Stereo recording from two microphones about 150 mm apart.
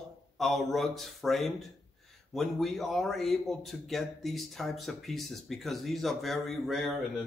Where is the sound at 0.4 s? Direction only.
Centre (ahead or behind).